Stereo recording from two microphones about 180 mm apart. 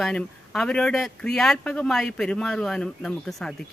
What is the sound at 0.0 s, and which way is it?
Speech, 5° left (ahead or behind).